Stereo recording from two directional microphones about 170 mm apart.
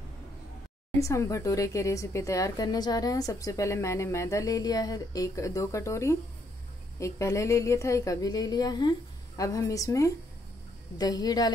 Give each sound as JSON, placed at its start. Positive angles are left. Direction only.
{"t": 0.9, "sound": "a woman's voice", "side_deg": 20}